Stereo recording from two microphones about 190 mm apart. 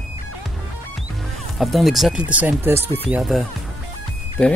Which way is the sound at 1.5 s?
Centre (ahead or behind).